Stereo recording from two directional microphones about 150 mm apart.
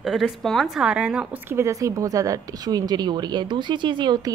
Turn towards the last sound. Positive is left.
turn(degrees=-30)  # may be behind; listen again after turning